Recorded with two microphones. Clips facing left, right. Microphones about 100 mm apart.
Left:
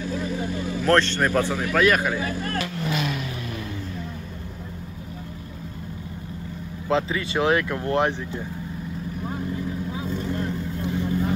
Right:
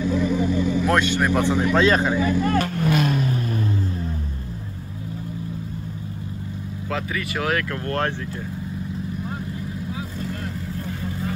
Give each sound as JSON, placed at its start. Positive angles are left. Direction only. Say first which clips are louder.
{"t": 0.8, "sound": "speech", "louder": "left 4 dB", "side_deg": -10}
{"t": 2.6, "sound": "vehicle", "louder": "right 5 dB", "side_deg": -45}
{"t": 6.9, "sound": "speech", "louder": "left 4 dB", "side_deg": 25}
{"t": 10.1, "sound": "vehicle", "louder": "left 3 dB", "side_deg": 25}